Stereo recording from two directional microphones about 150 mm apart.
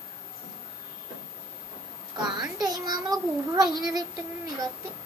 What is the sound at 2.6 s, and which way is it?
A child's voice, 25° right (ahead or behind).